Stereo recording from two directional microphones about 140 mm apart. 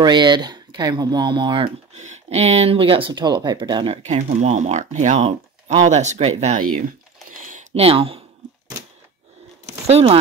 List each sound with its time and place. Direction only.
0.0 s speech: 35° right (ahead or behind)
2.0 s speech: 50° right (ahead or behind)
4.0 s speech: 50° right (ahead or behind)
7.3 s a sound: 65° right (ahead or behind)
7.7 s speech: 45° right (ahead or behind)
9.8 s speech: 45° right (ahead or behind)